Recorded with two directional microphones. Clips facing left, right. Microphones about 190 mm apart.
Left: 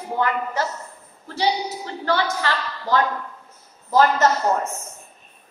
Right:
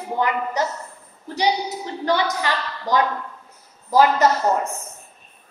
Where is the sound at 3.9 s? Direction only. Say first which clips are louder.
Right 1 dB; 10° right (ahead or behind).